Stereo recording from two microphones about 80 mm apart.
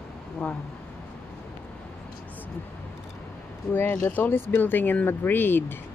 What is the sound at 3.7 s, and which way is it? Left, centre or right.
Speech, left.